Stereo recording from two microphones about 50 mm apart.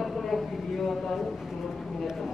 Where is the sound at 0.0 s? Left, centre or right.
Centre.